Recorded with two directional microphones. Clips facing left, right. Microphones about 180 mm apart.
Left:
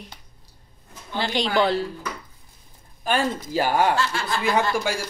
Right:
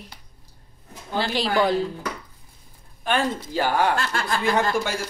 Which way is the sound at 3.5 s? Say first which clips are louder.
Left 1 dB; 10° left (ahead or behind).